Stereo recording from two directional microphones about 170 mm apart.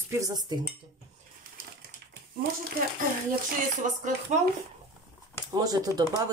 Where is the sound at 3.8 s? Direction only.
50° right (ahead or behind).